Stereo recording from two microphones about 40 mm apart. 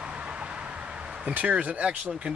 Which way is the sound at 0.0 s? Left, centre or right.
Right.